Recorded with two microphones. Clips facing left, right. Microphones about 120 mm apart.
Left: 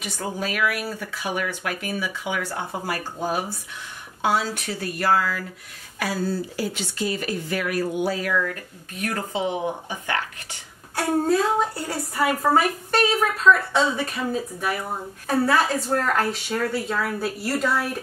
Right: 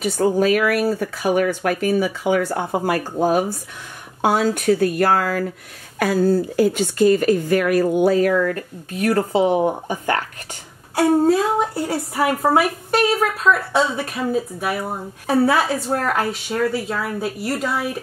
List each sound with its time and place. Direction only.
0.0 s speech: 45° right (ahead or behind)
9.0 s speech: 35° right (ahead or behind)
11.2 s speech: centre (ahead or behind)